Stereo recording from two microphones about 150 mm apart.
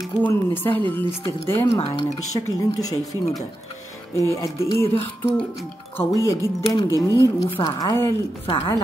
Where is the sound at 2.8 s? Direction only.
25° left (ahead or behind).